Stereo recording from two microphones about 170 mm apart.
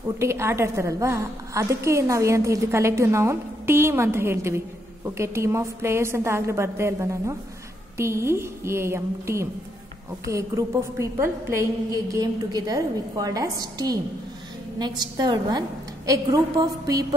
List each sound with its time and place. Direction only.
0.2 s a woman's voice: 15° right (ahead or behind)